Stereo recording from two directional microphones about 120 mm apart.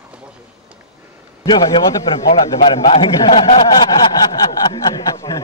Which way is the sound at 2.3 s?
50° left (ahead or behind).